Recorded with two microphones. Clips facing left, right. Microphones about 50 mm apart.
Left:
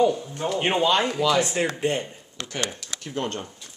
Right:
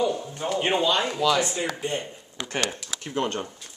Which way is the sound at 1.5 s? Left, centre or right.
Left.